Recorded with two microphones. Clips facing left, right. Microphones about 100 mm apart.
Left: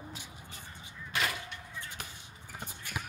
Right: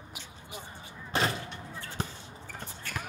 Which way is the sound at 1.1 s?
35° right (ahead or behind).